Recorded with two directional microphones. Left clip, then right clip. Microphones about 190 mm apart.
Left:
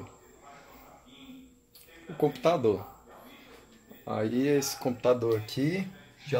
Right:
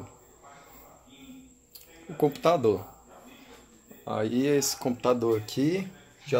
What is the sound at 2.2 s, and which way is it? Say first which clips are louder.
Speech: right 2 dB; 10° right (ahead or behind).